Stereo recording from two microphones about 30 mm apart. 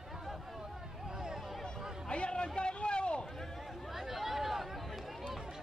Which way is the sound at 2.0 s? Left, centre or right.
Left.